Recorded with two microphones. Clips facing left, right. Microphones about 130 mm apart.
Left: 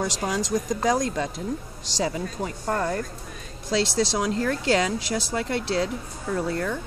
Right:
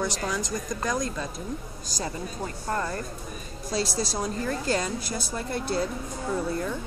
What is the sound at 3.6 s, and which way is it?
A woman's voice, 90° left.